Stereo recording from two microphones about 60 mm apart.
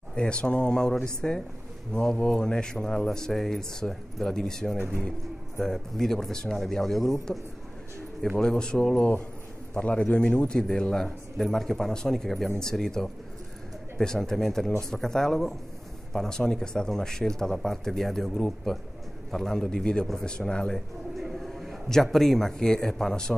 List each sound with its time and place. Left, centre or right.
0.1 s a man's voice: centre
8.4 s a man's voice: centre
21.2 s a man's voice: centre